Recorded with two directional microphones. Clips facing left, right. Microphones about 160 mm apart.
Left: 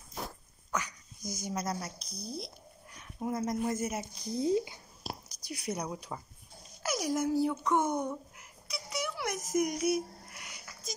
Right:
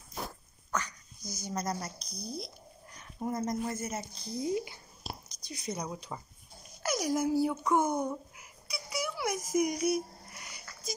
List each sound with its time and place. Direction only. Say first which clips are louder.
0.7 s dog: even; 10° left (ahead or behind)
1.5 s speech: right 1 dB; 5° left (ahead or behind)
3.6 s speech: left 3 dB; 15° left (ahead or behind)
4.4 s speech: left 3 dB; 25° left (ahead or behind)
5.0 s whispering: left 2 dB; 10° left (ahead or behind)
5.7 s speech: left 1 dB; 10° left (ahead or behind)
6.8 s a sound: right 1 dB; centre (ahead or behind)